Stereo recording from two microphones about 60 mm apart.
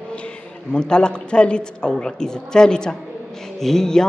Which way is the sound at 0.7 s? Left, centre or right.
Centre.